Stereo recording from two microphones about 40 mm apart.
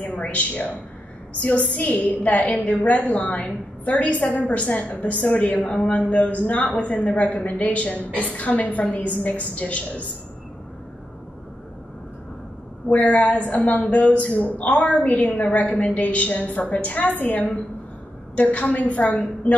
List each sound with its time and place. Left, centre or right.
0.0 s a woman's voice: left
5.7 s speech: left
12.8 s speech: left